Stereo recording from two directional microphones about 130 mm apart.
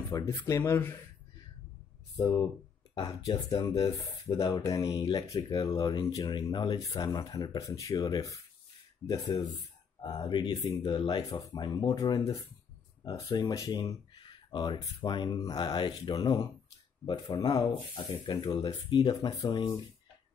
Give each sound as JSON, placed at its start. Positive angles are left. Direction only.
{"t": 0.1, "sound": "speech", "side_deg": 25}
{"t": 2.9, "sound": "speech", "side_deg": 35}